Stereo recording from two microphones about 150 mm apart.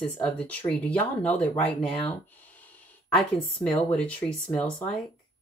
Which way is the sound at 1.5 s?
35° left (ahead or behind).